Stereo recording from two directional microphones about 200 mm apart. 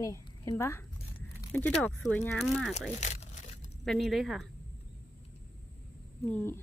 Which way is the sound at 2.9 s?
35° left (ahead or behind).